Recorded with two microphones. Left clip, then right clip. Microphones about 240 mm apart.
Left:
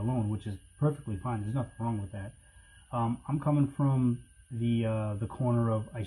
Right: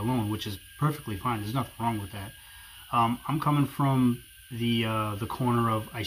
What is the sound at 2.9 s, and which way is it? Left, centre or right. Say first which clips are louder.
Speech: right 8 dB; centre.